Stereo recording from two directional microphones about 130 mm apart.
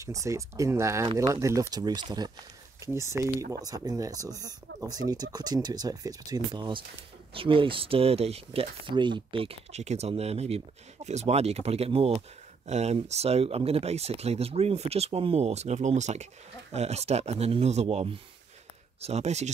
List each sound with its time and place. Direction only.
0.0 s speech: 25° right (ahead or behind)
2.8 s speech: 20° right (ahead or behind); by 19.5 s 60° right (ahead or behind)